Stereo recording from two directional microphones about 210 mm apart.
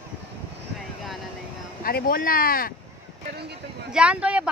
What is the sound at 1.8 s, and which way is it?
Speech, 45° left (ahead or behind).